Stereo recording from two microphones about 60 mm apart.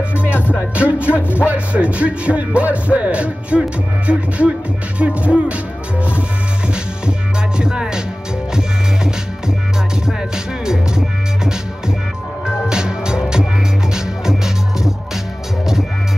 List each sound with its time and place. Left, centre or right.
0.1 s music: left
0.7 s music: right
1.1 s speech: left
1.5 s music: right
6.7 s music: centre
10.0 s music: centre
12.6 s music: centre